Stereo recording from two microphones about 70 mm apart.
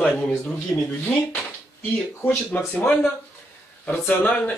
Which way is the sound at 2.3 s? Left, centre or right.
Left.